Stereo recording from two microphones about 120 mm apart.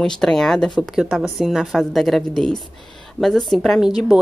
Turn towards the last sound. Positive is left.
turn(degrees=0)  # may be behind; listen again after turning